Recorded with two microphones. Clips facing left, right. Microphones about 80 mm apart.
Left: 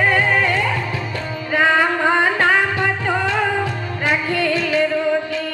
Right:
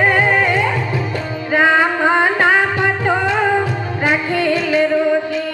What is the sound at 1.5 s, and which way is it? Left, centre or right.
Music, right.